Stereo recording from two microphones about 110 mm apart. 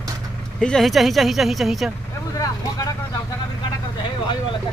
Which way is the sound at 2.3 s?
30° left (ahead or behind).